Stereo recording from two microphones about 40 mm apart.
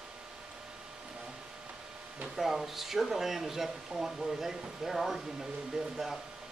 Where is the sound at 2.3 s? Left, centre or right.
Centre.